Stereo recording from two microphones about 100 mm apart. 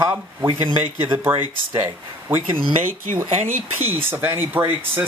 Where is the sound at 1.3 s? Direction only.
20° right (ahead or behind).